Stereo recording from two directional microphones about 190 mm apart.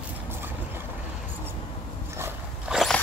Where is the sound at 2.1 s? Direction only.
15° right (ahead or behind).